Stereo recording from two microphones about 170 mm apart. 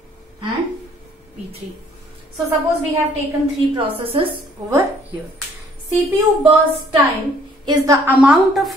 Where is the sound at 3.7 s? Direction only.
30° right (ahead or behind).